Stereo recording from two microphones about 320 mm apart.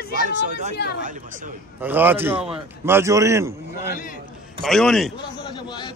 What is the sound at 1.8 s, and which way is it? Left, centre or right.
A man's voice, centre.